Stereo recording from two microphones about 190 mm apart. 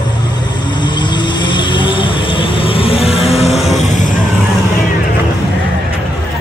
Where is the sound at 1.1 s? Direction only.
25° left (ahead or behind).